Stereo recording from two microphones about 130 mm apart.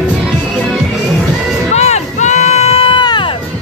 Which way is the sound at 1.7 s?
60° left (ahead or behind).